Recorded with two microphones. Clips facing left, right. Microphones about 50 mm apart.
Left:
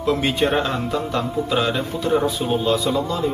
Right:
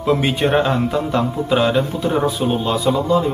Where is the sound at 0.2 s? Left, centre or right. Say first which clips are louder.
Right 3 dB; centre.